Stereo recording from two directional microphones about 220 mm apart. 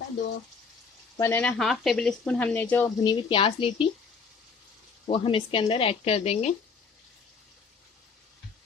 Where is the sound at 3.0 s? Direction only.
20° left (ahead or behind).